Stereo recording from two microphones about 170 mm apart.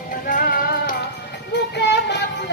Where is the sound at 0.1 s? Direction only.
55° left (ahead or behind).